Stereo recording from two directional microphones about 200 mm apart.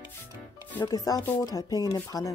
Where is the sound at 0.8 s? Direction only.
20° left (ahead or behind).